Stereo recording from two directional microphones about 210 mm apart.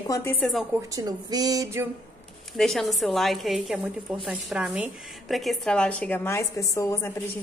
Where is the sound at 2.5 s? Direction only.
Centre (ahead or behind).